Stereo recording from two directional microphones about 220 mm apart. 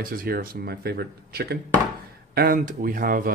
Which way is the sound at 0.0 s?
40° right (ahead or behind).